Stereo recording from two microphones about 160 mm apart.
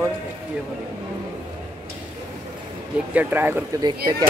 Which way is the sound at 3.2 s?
10° right (ahead or behind).